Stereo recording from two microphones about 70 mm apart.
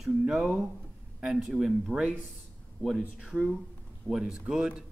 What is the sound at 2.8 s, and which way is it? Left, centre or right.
Speech, centre.